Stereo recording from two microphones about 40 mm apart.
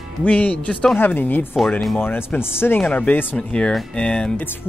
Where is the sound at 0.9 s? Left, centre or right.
Left.